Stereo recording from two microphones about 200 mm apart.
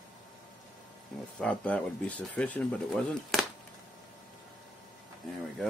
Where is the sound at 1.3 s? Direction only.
5° left (ahead or behind).